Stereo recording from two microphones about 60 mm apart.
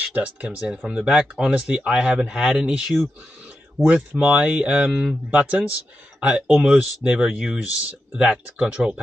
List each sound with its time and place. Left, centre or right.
0.1 s speech: right
0.7 s speech: centre
3.8 s speech: right
7.6 s speech: right
8.3 s speech: centre